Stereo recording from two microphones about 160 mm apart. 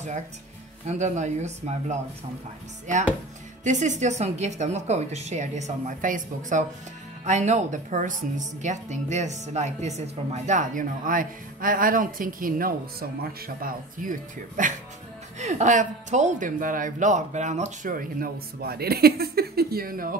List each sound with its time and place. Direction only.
0.8 s a woman's voice: 50° right (ahead or behind)
3.6 s a woman's voice: 50° right (ahead or behind)